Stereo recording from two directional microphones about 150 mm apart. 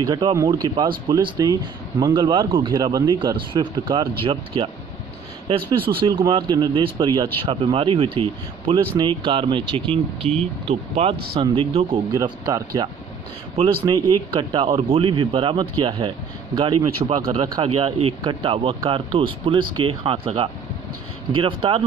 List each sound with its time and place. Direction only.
0.0 s speech: 25° right (ahead or behind)
5.9 s speech: 35° right (ahead or behind)
12.1 s speech: 25° right (ahead or behind)
14.5 s speech: 35° right (ahead or behind)